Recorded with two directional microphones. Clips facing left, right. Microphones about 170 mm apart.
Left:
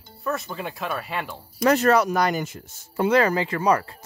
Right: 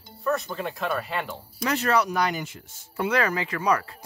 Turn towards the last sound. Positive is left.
turn(degrees=30)  # may be behind; listen again after turning